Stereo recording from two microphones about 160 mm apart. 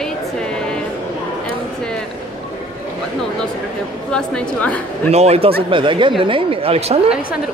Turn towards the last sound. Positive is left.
turn(degrees=-40)  # may be behind; listen again after turning